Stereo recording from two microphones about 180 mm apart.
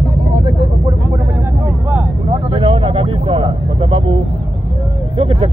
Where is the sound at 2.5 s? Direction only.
30° right (ahead or behind).